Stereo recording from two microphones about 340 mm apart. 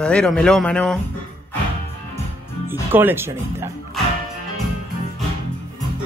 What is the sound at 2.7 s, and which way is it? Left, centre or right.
Speech, centre.